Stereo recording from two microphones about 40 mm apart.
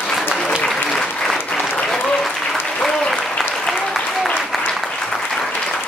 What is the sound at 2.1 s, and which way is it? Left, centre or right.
Applause, centre.